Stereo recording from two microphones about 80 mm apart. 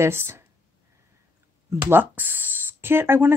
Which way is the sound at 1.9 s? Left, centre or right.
Right.